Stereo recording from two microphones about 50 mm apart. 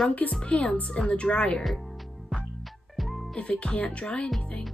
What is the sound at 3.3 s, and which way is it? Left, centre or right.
Speech, left.